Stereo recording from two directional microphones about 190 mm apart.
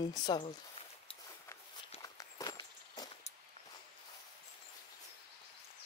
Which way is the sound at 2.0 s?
20° left (ahead or behind).